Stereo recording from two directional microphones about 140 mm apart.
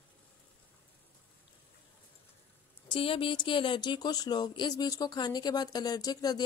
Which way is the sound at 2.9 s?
40° left (ahead or behind).